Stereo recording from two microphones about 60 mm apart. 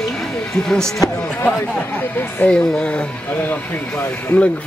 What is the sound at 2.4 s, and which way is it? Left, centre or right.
Speech, centre.